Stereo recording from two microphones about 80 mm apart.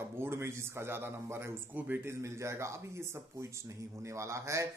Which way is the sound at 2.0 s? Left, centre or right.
Right.